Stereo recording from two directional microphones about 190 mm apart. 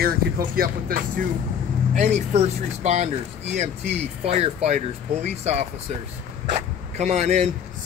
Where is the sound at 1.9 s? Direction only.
40° right (ahead or behind).